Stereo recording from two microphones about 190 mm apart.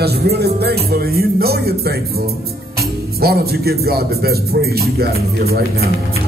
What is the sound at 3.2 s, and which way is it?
Speech, 55° right (ahead or behind).